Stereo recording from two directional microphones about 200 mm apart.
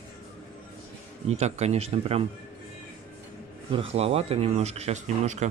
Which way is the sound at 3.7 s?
25° right (ahead or behind).